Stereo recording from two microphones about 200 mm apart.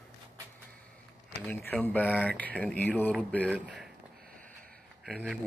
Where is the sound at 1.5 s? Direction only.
5° left (ahead or behind).